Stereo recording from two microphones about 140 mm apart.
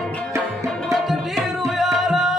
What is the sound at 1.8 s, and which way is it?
Music, centre (ahead or behind).